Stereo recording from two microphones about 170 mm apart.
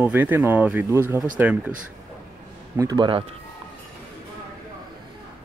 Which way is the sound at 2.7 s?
20° right (ahead or behind).